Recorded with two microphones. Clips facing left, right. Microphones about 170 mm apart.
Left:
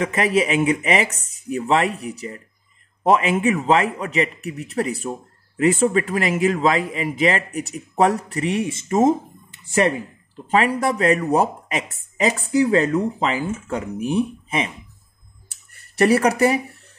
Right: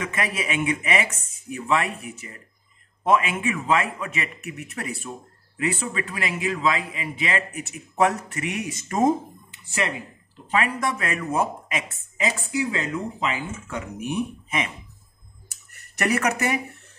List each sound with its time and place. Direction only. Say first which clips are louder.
0.0 s a man's voice: left 9 dB; 35° left (ahead or behind)
9.7 s speech: left 9 dB; 50° left (ahead or behind)
10.5 s a man's voice: left 6 dB; 35° left (ahead or behind)
15.5 s a sound: left 8 dB; 30° left (ahead or behind)